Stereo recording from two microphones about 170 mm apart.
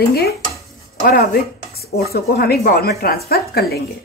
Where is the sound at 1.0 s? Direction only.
60° left (ahead or behind).